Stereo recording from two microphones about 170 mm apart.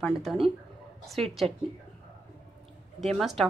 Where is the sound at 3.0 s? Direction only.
Centre (ahead or behind).